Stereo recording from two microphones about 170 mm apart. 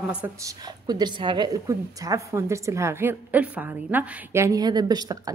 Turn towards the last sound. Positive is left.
turn(degrees=-25)  # may be behind; listen again after turning